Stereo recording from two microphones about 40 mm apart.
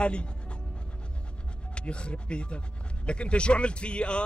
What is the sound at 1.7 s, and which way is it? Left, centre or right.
Speech, left.